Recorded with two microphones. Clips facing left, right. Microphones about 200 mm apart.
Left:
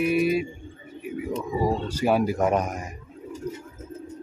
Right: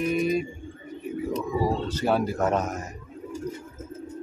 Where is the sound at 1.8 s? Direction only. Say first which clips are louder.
Left 2 dB; 10° left (ahead or behind).